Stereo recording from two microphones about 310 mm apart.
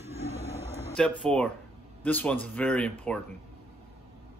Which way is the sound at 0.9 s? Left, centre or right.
Centre.